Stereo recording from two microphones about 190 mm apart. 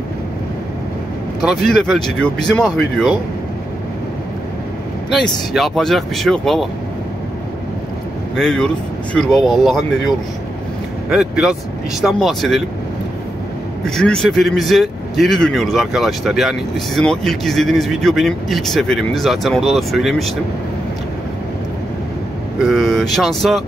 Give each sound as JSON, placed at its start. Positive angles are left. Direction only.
{"t": 1.4, "sound": "speech", "side_deg": 0}
{"t": 5.1, "sound": "speech", "side_deg": 0}
{"t": 8.4, "sound": "speech", "side_deg": 5}
{"t": 13.8, "sound": "speech", "side_deg": 5}
{"t": 22.6, "sound": "speech", "side_deg": 0}